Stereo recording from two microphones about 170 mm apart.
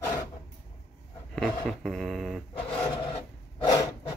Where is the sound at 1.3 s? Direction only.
Centre (ahead or behind).